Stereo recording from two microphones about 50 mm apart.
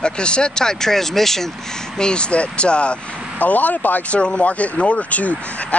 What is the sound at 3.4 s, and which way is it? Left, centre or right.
Speech, left.